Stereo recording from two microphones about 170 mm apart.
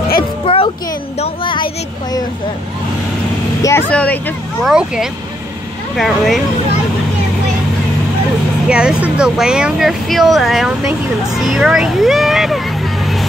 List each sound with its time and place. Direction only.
0.5 s music: 30° left (ahead or behind)
1.2 s a sound: 30° left (ahead or behind)
3.9 s speech: 10° left (ahead or behind)
4.6 s speech: 5° right (ahead or behind)
8.6 s speech: 5° right (ahead or behind)